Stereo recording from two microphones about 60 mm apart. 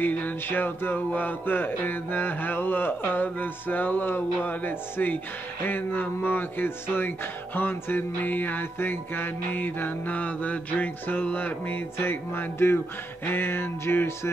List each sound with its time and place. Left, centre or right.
0.0 s music: left
12.0 s music: left